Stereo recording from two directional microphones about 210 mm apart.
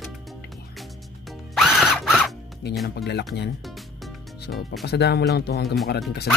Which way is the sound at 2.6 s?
50° left (ahead or behind).